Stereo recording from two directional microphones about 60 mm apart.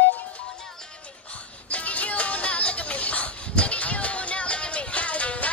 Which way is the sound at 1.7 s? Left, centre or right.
Left.